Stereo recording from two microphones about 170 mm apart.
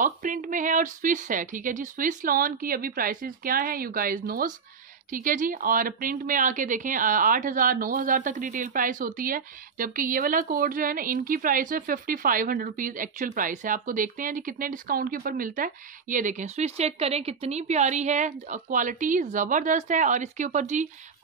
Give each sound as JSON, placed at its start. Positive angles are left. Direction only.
{"t": 0.0, "sound": "a woman's voice", "side_deg": -50}